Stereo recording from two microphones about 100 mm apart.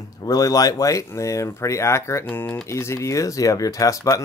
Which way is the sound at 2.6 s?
25° left (ahead or behind).